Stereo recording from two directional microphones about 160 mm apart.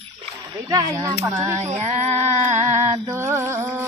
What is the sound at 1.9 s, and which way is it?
Female singing, 45° right (ahead or behind).